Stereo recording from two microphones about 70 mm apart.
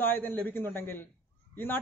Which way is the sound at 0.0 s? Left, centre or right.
Left.